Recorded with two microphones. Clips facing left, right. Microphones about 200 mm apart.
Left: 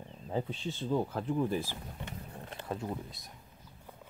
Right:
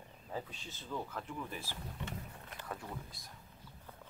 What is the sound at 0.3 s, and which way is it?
Speech, 30° left (ahead or behind).